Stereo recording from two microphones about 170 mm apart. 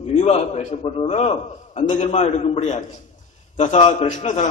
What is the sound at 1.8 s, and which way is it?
A man's voice, 45° left (ahead or behind).